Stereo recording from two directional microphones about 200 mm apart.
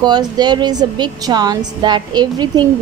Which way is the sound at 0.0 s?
20° right (ahead or behind).